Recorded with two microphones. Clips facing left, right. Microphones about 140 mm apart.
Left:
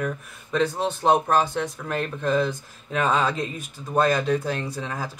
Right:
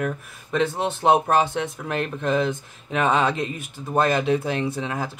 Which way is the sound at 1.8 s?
5° right (ahead or behind).